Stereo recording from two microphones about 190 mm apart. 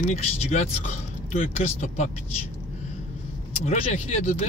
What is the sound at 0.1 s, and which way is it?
Speech, 35° left (ahead or behind).